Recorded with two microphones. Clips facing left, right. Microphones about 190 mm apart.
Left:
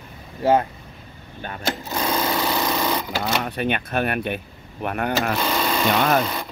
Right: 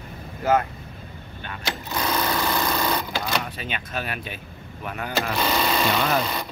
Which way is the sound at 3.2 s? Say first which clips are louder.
Left 5 dB; 60° left (ahead or behind).